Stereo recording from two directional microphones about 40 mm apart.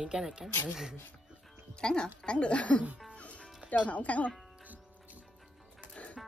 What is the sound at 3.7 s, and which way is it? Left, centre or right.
Speech, left.